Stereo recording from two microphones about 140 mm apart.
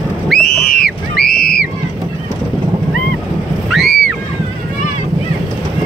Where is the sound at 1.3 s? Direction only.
90° left.